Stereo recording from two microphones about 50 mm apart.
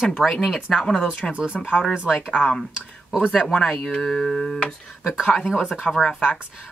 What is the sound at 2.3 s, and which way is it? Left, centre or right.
Speech, left.